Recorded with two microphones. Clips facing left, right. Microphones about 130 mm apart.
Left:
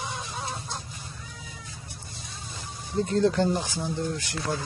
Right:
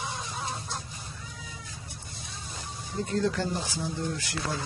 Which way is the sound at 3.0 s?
35° left (ahead or behind).